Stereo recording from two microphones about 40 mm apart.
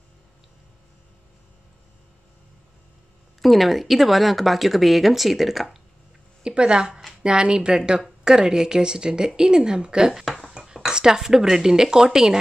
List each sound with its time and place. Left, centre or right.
3.3 s speech: centre
6.4 s a woman's voice: right
10.2 s dishes: centre
10.7 s speech: centre